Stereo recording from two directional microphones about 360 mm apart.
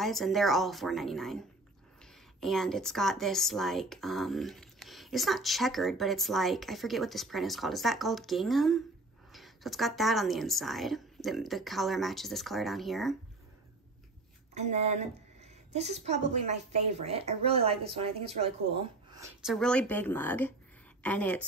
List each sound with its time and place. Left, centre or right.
0.0 s speech: centre
2.4 s speech: centre
14.5 s a woman's voice: centre